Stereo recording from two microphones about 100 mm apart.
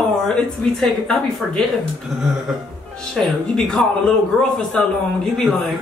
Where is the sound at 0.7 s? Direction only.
5° left (ahead or behind).